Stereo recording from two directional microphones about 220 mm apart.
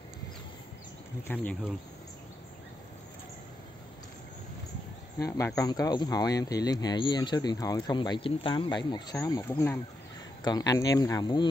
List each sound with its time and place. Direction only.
1.2 s speech: 5° left (ahead or behind)
5.6 s speech: 15° left (ahead or behind)